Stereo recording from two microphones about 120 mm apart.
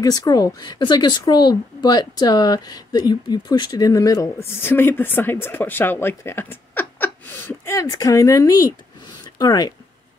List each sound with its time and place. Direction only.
0.0 s a woman's voice: 30° left (ahead or behind)